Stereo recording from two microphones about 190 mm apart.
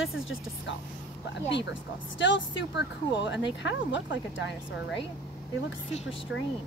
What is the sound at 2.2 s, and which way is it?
Speech, 75° left (ahead or behind).